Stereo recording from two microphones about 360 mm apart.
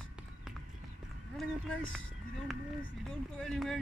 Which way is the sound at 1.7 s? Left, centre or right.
Centre.